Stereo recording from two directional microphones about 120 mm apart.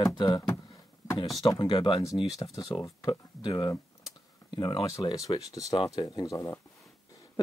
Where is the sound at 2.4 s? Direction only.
30° left (ahead or behind).